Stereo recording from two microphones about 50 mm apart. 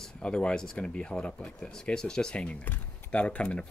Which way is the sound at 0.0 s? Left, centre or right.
Centre.